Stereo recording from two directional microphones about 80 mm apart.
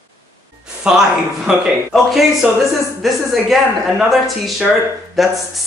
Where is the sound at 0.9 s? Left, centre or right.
Centre.